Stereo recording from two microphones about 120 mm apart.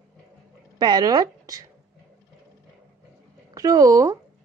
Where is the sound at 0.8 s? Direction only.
35° right (ahead or behind).